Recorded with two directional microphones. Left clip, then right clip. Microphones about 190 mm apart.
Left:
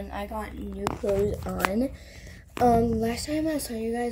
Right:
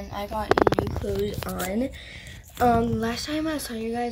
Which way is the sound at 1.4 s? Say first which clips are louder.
Left 2 dB; 10° left (ahead or behind).